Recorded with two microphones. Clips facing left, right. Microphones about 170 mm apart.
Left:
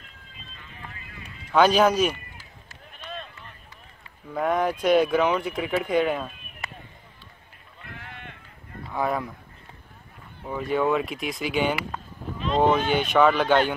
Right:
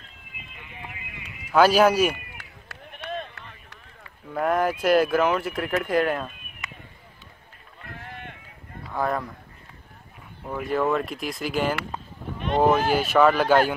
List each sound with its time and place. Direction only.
0.4 s music: 15° right (ahead or behind)
1.5 s speech: 5° right (ahead or behind)
2.3 s a sound: 65° right (ahead or behind)
4.3 s speech: centre (ahead or behind)
6.6 s a sound: 35° left (ahead or behind)
8.9 s speech: centre (ahead or behind)
10.4 s speech: centre (ahead or behind)